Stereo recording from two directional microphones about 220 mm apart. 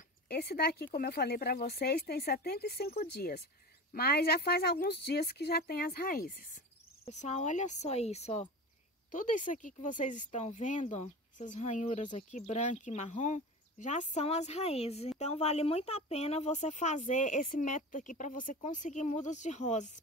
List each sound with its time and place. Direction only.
0.3 s speech: 45° left (ahead or behind)